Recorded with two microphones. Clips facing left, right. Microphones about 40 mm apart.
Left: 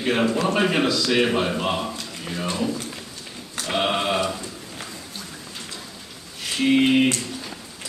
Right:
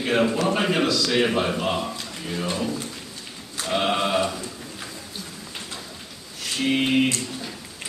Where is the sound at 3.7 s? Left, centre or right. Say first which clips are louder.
Even; centre.